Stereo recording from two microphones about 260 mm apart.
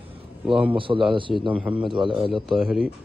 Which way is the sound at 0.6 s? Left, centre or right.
Centre.